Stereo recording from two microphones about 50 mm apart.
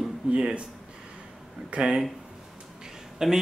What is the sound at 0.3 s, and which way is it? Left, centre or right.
Speech, centre.